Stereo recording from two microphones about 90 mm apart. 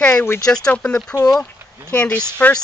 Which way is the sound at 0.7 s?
10° left (ahead or behind).